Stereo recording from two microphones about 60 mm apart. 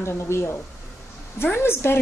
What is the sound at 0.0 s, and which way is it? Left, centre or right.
Speech, left.